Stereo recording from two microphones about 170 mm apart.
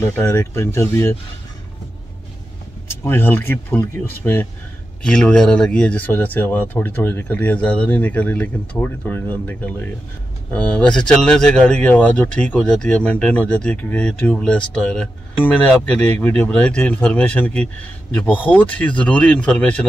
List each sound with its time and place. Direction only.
0.0 s speech: 15° left (ahead or behind)
3.0 s speech: 15° left (ahead or behind)